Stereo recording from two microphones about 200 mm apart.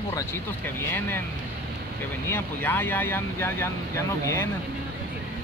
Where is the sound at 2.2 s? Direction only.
10° left (ahead or behind).